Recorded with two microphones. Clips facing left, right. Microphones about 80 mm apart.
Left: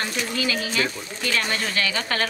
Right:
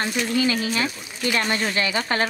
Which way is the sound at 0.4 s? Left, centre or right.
Right.